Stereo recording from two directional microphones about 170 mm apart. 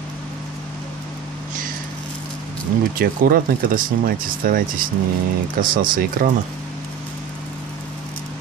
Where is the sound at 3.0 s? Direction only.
60° right (ahead or behind).